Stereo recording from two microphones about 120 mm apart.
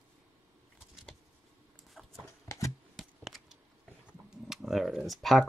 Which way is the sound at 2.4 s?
25° left (ahead or behind).